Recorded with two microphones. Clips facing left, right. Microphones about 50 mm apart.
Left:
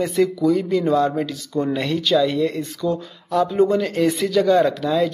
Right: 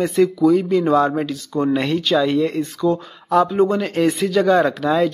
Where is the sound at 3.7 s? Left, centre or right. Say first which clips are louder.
Right 1 dB; right.